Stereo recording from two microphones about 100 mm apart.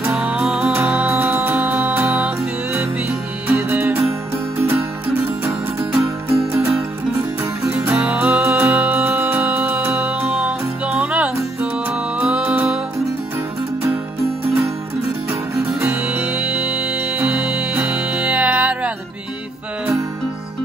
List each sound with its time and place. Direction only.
0.1 s music: 10° right (ahead or behind)
3.5 s music: 25° right (ahead or behind)
5.9 s music: 25° right (ahead or behind)
7.9 s music: 10° right (ahead or behind); by 9.9 s 25° right (ahead or behind)
9.9 s music: 10° right (ahead or behind)
15.5 s music: 30° right (ahead or behind)
16.2 s music: 10° right (ahead or behind)